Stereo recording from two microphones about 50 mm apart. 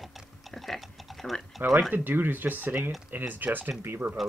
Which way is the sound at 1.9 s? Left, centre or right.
Right.